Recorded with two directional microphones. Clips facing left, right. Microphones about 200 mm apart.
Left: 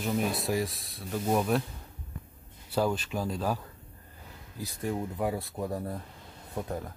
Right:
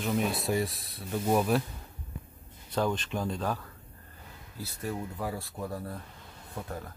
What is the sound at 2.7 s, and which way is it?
Speech, 5° left (ahead or behind).